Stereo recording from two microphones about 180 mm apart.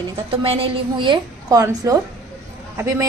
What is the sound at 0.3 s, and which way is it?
A woman's voice, 30° right (ahead or behind).